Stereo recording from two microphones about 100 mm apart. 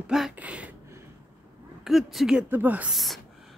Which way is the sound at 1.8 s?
Centre (ahead or behind).